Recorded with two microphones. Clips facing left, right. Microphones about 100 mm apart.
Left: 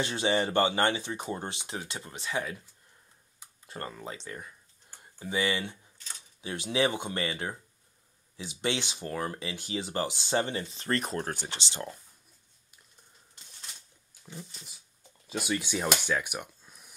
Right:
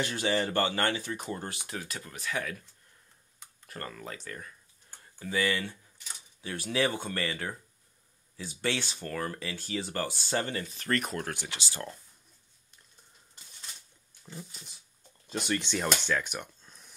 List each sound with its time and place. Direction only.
0.0 s speech: 25° left (ahead or behind)
3.6 s speech: 25° left (ahead or behind)
5.9 s a sound: 10° right (ahead or behind)
6.4 s speech: 20° left (ahead or behind)
14.4 s speech: centre (ahead or behind)